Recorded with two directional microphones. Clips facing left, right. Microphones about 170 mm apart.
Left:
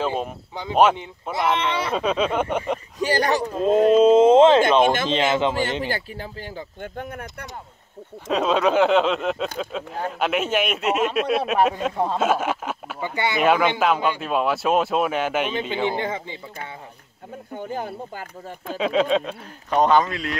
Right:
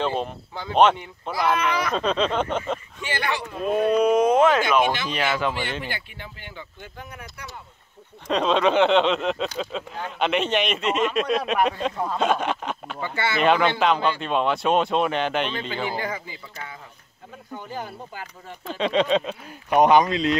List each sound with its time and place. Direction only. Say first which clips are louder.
0.0 s speech: even; 5° left (ahead or behind)
1.3 s speech: even; 25° left (ahead or behind)
2.0 s speech: left 3 dB; 10° left (ahead or behind)
3.0 s speech: left 11 dB; 40° left (ahead or behind)
3.5 s speech: left 5 dB; 25° left (ahead or behind)
5.9 s speech: left 6 dB; 40° left (ahead or behind)
6.8 s speech: left 8 dB; 55° left (ahead or behind)
8.3 s speech: left 1 dB; 5° left (ahead or behind)
15.5 s speech: left 4 dB; 20° left (ahead or behind)
17.6 s speech: left 5 dB; 50° left (ahead or behind)
18.7 s speech: left 1 dB; 5° left (ahead or behind)
19.7 s speech: right 2 dB; 15° right (ahead or behind)